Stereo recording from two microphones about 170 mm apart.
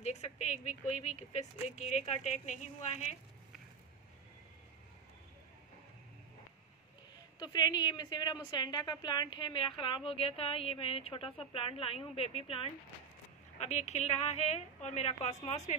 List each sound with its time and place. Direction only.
0.0 s speech: 40° left (ahead or behind)
7.3 s speech: 25° left (ahead or behind); by 15.7 s 40° left (ahead or behind)